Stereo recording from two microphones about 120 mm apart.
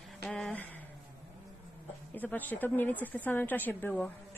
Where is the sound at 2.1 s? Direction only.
15° left (ahead or behind).